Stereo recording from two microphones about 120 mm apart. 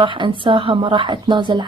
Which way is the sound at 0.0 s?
45° right (ahead or behind).